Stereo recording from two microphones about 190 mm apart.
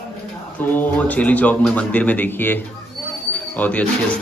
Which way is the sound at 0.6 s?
10° left (ahead or behind).